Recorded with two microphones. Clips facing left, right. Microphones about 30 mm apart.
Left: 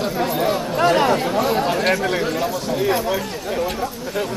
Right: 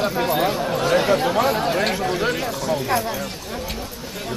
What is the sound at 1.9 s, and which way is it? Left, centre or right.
Speech, centre.